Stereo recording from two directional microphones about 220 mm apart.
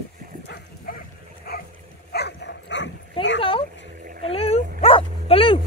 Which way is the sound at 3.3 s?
25° left (ahead or behind).